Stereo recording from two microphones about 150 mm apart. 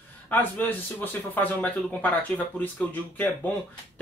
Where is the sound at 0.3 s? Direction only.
10° left (ahead or behind).